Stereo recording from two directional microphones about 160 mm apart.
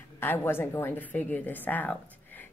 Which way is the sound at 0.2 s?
15° left (ahead or behind).